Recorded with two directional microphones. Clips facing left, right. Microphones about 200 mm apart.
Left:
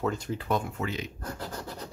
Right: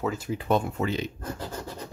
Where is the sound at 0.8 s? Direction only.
30° right (ahead or behind).